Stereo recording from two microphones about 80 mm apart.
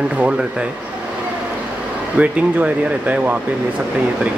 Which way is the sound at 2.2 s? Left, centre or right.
Centre.